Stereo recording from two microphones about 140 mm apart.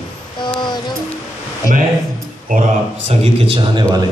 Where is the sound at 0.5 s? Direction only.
30° left (ahead or behind).